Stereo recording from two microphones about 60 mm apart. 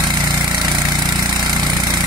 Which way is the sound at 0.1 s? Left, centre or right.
Right.